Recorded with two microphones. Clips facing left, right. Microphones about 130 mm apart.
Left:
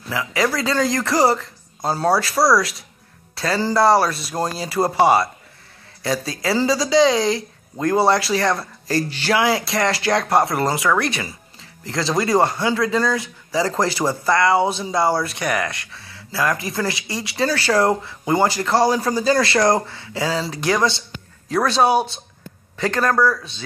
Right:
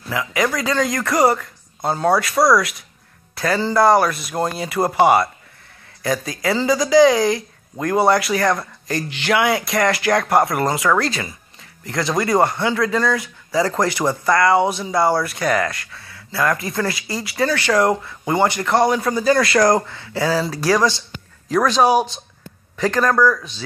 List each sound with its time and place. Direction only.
0.3 s speech: 30° left (ahead or behind)